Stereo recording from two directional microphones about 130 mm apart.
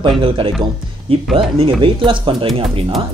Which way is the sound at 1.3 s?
40° right (ahead or behind).